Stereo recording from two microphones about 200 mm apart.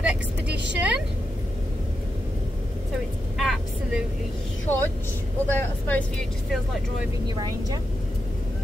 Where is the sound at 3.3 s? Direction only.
Centre (ahead or behind).